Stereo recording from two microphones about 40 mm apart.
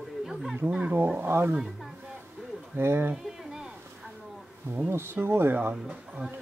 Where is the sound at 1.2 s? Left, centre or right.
Right.